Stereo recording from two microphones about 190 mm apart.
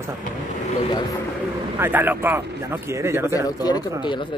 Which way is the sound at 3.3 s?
20° left (ahead or behind).